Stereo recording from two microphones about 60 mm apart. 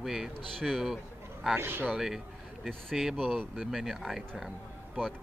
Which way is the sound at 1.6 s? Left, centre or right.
Right.